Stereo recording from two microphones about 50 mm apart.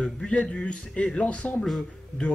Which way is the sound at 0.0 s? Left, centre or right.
Left.